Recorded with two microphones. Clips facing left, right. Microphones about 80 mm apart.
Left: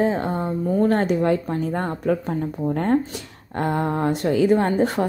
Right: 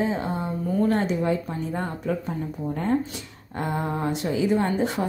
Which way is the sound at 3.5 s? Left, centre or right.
Left.